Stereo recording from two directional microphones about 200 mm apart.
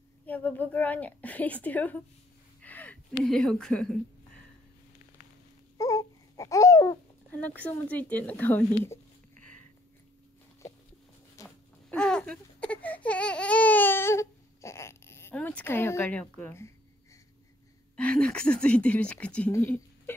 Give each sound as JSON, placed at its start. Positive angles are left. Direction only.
{"t": 0.3, "sound": "a woman's voice", "side_deg": 10}
{"t": 5.8, "sound": "babbling", "side_deg": 15}
{"t": 7.3, "sound": "a woman's voice", "side_deg": 5}
{"t": 11.4, "sound": "baby cry", "side_deg": 5}
{"t": 17.9, "sound": "speech", "side_deg": 5}